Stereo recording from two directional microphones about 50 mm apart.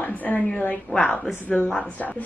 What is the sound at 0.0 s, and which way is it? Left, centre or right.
Speech, left.